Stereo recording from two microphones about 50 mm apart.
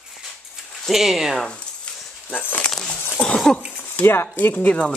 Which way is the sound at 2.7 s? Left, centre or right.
Centre.